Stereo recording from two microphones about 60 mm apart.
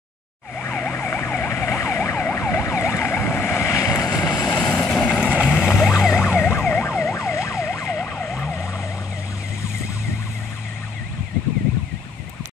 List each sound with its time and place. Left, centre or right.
0.6 s emergency vehicle: left
2.6 s vehicle: left
4.5 s vehicle: left
5.1 s vehicle: centre
5.9 s emergency vehicle: centre
6.2 s emergency vehicle: left